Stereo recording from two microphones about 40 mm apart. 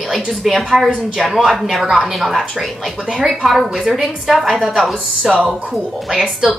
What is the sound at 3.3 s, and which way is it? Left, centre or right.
A woman's voice, centre.